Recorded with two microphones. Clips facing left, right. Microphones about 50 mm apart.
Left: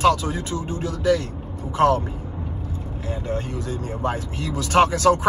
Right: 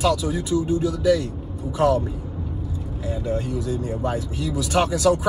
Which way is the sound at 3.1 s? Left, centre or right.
Left.